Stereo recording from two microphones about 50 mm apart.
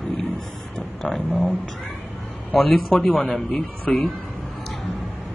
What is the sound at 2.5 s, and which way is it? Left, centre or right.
Speech, centre.